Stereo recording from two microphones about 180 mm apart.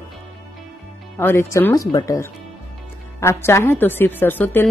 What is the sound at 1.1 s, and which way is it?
A woman's voice, 15° left (ahead or behind).